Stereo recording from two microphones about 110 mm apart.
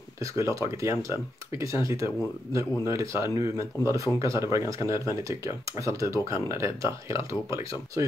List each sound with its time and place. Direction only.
0.2 s speech: 30° right (ahead or behind)